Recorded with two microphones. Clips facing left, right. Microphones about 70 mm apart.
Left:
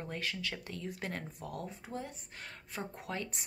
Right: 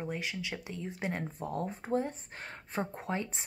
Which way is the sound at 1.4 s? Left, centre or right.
Right.